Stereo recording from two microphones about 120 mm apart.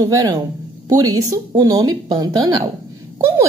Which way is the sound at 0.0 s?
30° right (ahead or behind).